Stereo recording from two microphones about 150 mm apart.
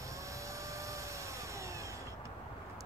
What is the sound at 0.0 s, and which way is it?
Vacuum cleaner, 20° right (ahead or behind).